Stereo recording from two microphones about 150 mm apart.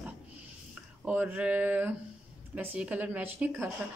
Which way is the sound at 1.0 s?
10° right (ahead or behind).